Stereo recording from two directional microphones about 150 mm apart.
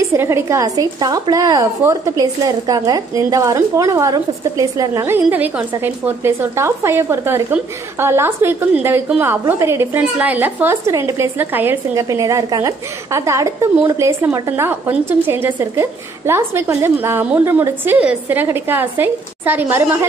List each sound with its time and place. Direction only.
0.0 s a woman's voice: 20° right (ahead or behind)